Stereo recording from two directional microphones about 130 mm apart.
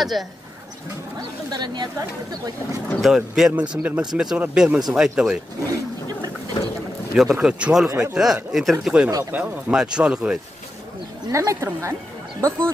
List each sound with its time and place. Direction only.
0.2 s speech: centre (ahead or behind)
1.5 s speech: 35° right (ahead or behind)
3.0 s speech: 5° right (ahead or behind)
6.6 s mechanisms: 35° left (ahead or behind)
7.2 s speech: 5° right (ahead or behind)
11.3 s a woman's voice: 25° right (ahead or behind)